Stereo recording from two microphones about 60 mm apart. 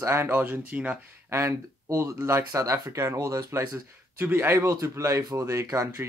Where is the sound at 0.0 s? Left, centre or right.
Right.